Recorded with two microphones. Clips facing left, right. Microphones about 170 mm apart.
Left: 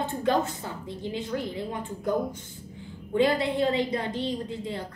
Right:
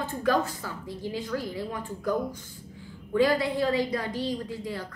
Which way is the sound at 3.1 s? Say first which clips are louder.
Even; 25° left (ahead or behind).